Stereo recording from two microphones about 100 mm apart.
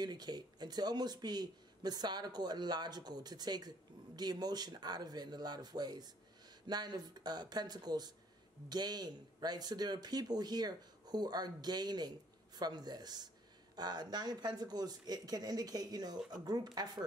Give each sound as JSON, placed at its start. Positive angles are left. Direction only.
{"t": 0.0, "sound": "a man's voice", "side_deg": -45}